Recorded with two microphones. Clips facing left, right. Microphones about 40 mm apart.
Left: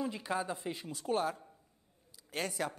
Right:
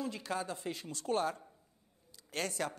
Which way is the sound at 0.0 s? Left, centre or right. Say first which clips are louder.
Left 2 dB; centre.